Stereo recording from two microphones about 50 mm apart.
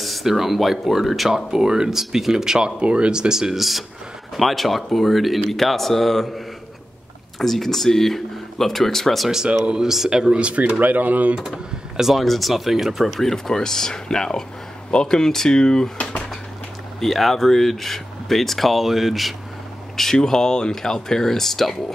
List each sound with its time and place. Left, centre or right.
0.0 s speech: centre
9.7 s speech: centre; by 11.3 s right
12.0 s speech: centre
13.1 s speech: centre
17.0 s speech: centre
20.0 s speech: centre